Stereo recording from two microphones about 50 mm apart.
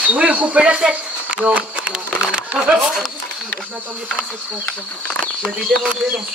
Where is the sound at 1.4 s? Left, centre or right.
Right.